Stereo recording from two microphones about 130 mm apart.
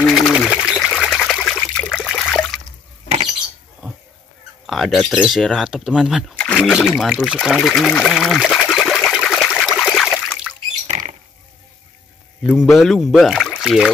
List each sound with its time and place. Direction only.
0.0 s a sound: centre (ahead or behind)
0.5 s trickle: 5° right (ahead or behind)
4.6 s speech: centre (ahead or behind)
9.2 s trickle: centre (ahead or behind)
10.9 s rodents: 75° right (ahead or behind)
12.4 s speech: 5° right (ahead or behind)